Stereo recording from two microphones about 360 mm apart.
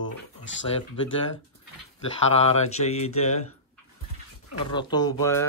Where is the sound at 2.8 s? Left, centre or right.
Centre.